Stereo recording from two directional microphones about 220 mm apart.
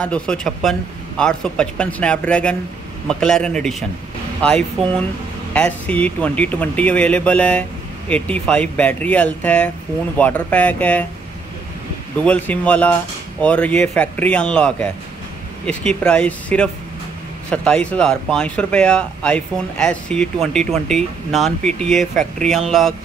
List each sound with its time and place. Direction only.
0.0 s speech: 5° left (ahead or behind)
12.3 s speech: 5° left (ahead or behind)